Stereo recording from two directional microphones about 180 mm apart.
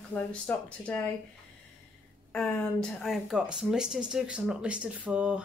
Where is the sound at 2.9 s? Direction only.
Centre (ahead or behind).